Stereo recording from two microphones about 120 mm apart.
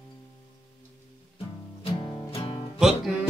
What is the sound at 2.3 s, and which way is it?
Music, 45° left (ahead or behind).